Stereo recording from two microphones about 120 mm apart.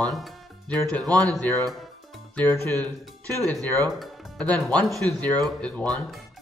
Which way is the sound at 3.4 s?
30° right (ahead or behind).